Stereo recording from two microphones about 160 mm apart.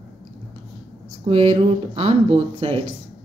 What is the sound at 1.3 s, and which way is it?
Speech, 40° right (ahead or behind).